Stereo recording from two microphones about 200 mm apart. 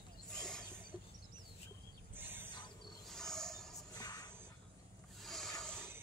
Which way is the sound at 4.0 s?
20° left (ahead or behind).